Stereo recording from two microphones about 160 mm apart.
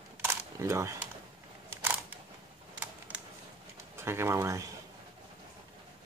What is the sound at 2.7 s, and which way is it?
Typing, 10° right (ahead or behind).